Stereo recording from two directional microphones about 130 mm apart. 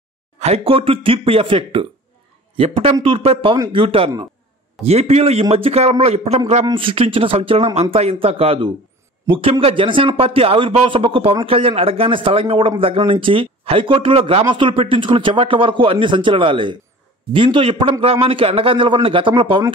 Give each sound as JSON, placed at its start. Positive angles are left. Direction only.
{"t": 0.4, "sound": "speech", "side_deg": -50}
{"t": 6.6, "sound": "a man's voice", "side_deg": -40}